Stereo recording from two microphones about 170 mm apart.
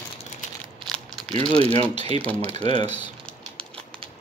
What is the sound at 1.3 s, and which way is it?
Speech, 35° right (ahead or behind).